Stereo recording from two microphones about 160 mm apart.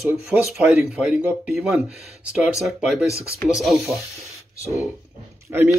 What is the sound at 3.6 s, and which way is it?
Speech, centre (ahead or behind).